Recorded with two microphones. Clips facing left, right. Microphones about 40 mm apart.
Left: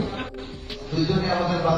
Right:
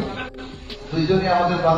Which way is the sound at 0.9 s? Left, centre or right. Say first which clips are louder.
Right 5 dB; right.